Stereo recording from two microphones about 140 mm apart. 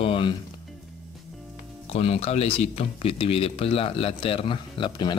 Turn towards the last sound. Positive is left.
turn(degrees=35)  # may be behind; listen again after turning